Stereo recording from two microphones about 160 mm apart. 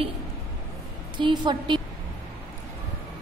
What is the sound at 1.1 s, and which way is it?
Speech, 30° right (ahead or behind).